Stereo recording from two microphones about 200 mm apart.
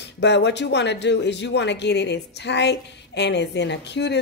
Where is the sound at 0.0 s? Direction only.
60° left (ahead or behind).